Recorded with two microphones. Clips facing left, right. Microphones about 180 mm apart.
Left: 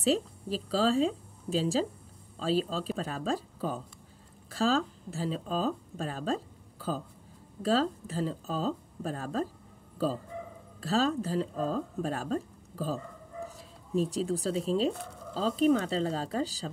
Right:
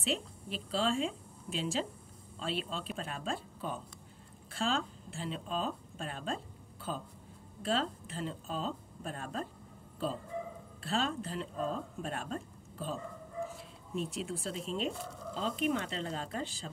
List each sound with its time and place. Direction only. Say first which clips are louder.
0.0 s speech: left 8 dB; 35° left (ahead or behind)
10.8 s speech: left 6 dB; 40° left (ahead or behind)